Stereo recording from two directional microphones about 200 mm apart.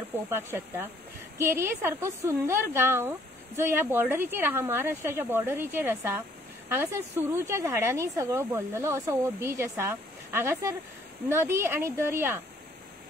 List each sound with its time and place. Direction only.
0.3 s a woman's voice: 10° right (ahead or behind)